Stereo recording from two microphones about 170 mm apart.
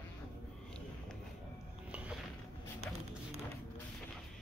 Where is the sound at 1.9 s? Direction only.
5° right (ahead or behind).